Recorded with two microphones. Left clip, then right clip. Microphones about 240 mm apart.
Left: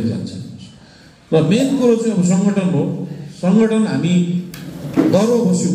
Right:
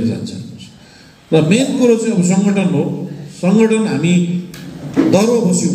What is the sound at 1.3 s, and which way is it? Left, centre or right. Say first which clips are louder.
A man's voice: right 2 dB; right.